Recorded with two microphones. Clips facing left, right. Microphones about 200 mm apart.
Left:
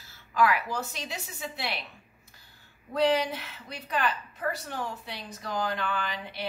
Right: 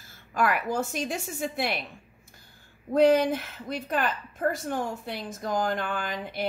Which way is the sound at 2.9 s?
50° right (ahead or behind).